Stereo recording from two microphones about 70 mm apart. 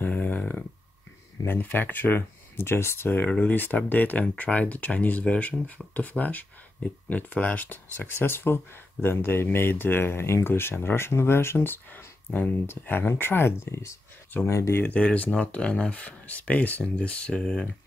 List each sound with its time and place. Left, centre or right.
0.0 s a sound: left
1.6 s speech: left
3.3 s speech: left
15.0 s speech: centre